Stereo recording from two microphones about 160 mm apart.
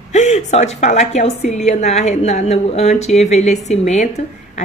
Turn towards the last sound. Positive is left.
turn(degrees=45)  # may be behind; listen again after turning